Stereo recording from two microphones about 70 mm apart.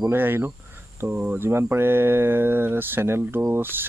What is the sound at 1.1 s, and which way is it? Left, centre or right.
Speech, centre.